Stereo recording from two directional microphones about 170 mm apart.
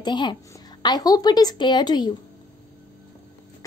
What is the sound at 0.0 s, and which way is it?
A woman's voice, 25° left (ahead or behind).